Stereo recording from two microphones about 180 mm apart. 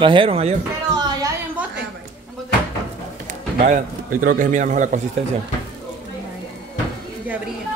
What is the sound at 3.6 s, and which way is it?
A man's voice, 50° right (ahead or behind).